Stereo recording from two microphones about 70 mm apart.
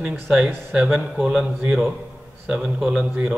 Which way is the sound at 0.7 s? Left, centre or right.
Centre.